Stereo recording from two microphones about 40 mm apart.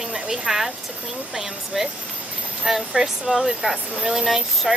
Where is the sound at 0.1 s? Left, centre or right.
Centre.